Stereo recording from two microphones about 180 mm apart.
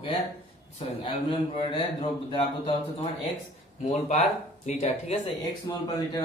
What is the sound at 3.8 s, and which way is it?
Speech, 45° left (ahead or behind).